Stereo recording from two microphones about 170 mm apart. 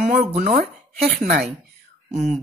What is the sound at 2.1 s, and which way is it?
Speech, 45° right (ahead or behind).